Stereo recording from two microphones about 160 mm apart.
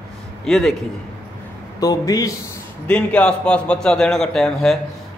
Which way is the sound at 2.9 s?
10° left (ahead or behind).